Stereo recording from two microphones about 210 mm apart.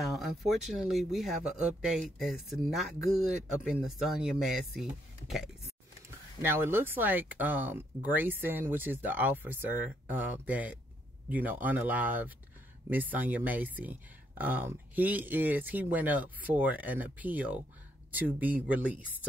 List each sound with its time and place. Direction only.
0.0 s speech: centre (ahead or behind)
6.4 s speech: 10° right (ahead or behind)